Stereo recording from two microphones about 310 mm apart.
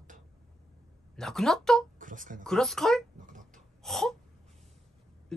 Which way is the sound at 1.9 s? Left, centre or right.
Right.